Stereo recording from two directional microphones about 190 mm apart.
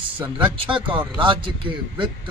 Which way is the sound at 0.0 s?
25° right (ahead or behind).